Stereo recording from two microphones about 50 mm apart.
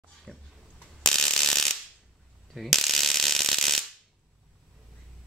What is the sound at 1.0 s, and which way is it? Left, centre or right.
Ratchet, centre.